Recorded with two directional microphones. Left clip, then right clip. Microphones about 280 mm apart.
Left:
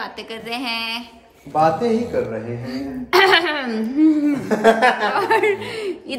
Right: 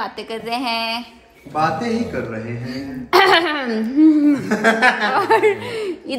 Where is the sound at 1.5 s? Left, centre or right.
Left.